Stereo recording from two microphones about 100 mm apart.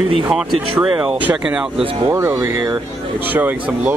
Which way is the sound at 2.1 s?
25° right (ahead or behind).